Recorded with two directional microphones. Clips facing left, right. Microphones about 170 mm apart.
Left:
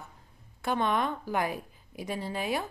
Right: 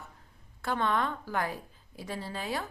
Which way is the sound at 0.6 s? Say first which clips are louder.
Left 2 dB; 15° left (ahead or behind).